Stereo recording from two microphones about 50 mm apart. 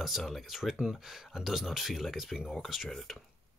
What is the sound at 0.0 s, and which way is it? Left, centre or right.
Speech, centre.